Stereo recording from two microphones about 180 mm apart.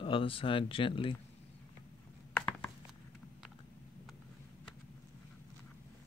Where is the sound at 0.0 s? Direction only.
30° left (ahead or behind).